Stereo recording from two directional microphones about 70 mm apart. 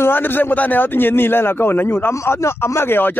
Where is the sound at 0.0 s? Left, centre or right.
Left.